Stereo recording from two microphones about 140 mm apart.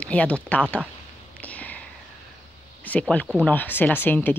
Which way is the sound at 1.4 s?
10° left (ahead or behind).